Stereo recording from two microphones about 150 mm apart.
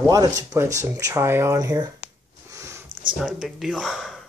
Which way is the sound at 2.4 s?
20° right (ahead or behind).